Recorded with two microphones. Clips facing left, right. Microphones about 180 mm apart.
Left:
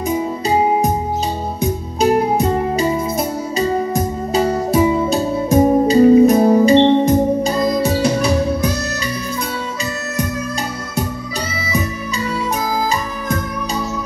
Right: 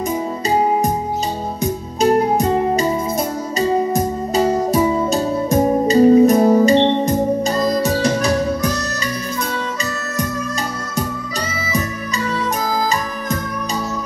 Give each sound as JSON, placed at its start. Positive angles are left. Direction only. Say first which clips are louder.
{"t": 2.0, "sound": "music", "louder": "even", "side_deg": 5}
{"t": 6.5, "sound": "music", "louder": "left 2 dB", "side_deg": 15}
{"t": 7.1, "sound": "organ", "louder": "left 2 dB", "side_deg": 5}